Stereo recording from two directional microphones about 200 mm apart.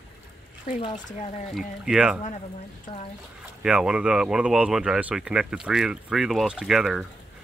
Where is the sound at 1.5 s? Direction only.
Centre (ahead or behind).